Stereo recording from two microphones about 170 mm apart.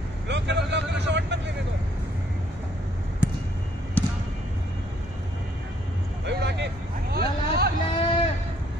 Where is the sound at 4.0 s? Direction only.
10° left (ahead or behind).